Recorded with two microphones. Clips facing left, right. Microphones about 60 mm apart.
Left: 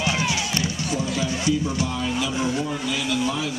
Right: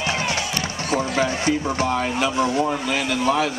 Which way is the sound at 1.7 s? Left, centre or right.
Right.